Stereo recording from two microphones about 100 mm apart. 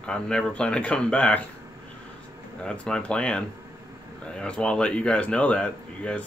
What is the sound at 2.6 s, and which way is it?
Speech, 10° left (ahead or behind).